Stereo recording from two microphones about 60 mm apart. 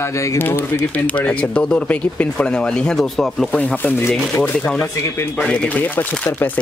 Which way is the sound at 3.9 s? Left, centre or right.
Left.